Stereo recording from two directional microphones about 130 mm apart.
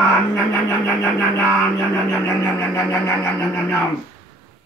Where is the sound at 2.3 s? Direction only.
20° left (ahead or behind).